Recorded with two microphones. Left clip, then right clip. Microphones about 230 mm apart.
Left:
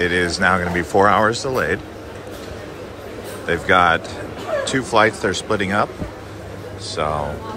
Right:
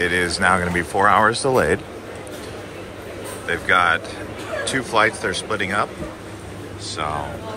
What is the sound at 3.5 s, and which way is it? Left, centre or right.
Speech, centre.